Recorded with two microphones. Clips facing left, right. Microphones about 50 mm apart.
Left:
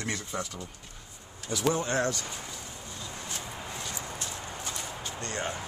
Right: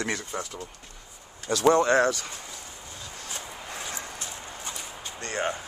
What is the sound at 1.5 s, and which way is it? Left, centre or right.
Speech, right.